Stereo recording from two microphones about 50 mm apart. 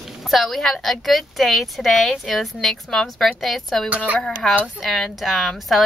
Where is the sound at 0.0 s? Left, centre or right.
Centre.